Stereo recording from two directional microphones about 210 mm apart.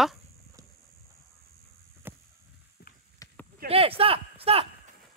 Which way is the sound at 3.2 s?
15° left (ahead or behind).